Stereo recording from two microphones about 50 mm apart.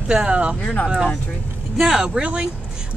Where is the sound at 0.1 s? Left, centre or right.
Right.